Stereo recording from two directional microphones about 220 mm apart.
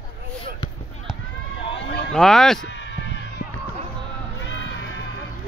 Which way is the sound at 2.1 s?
Centre (ahead or behind).